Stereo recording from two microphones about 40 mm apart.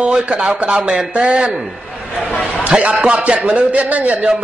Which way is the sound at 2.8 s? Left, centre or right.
Right.